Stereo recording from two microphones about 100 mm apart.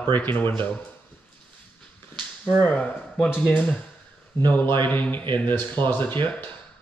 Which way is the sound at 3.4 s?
15° left (ahead or behind).